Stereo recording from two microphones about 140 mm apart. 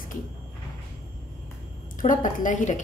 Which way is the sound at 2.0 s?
65° left (ahead or behind).